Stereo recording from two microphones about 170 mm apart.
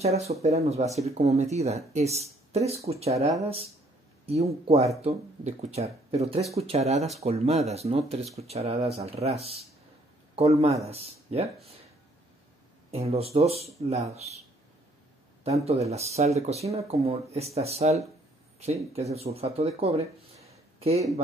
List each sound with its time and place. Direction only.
0.0 s speech: 40° right (ahead or behind)
4.3 s speech: 35° right (ahead or behind)
12.9 s speech: 35° right (ahead or behind)
15.9 s speech: 40° right (ahead or behind)